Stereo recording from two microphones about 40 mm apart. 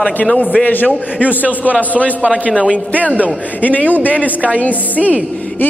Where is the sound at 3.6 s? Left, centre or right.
Left.